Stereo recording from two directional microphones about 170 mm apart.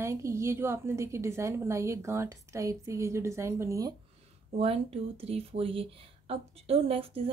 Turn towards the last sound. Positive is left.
turn(degrees=-35)  # may be behind; listen again after turning